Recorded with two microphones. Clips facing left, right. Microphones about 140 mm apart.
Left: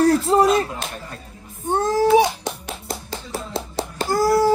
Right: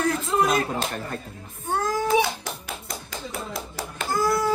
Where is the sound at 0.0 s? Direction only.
35° left (ahead or behind).